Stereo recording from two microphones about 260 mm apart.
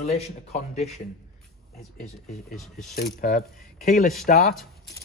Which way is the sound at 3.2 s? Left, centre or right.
Left.